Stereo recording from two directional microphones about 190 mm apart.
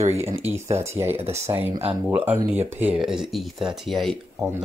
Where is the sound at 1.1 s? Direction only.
35° right (ahead or behind).